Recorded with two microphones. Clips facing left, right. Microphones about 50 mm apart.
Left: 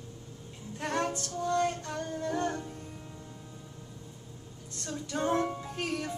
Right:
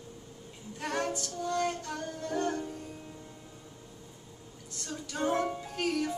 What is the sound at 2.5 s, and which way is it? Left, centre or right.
Music, centre.